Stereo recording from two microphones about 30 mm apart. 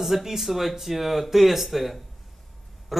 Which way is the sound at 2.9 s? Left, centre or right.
Centre.